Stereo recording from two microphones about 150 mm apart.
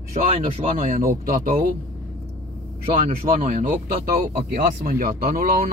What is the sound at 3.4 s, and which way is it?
Speech, 65° right (ahead or behind).